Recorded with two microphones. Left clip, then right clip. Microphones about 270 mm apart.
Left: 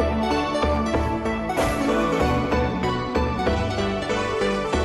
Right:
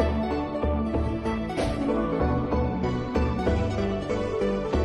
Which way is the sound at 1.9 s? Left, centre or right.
Left.